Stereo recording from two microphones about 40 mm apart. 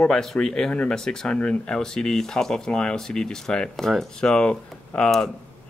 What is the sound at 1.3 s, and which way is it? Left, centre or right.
Speech, left.